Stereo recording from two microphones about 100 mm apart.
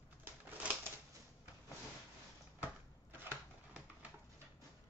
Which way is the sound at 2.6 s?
20° right (ahead or behind).